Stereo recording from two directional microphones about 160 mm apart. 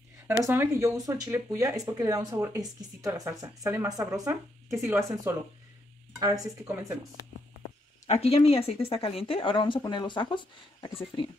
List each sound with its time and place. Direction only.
0.4 s speech: 15° right (ahead or behind)
8.1 s speech: 40° left (ahead or behind)